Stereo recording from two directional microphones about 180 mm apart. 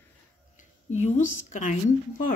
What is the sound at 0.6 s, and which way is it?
A woman's voice, 40° left (ahead or behind).